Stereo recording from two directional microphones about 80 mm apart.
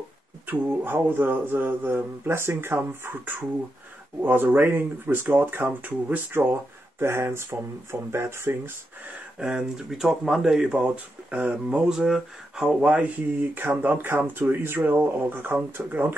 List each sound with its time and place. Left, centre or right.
0.5 s speech: right
7.0 s speech: right
9.4 s speech: centre